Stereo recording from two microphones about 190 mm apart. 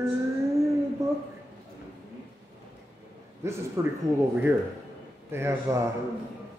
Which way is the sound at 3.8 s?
15° right (ahead or behind).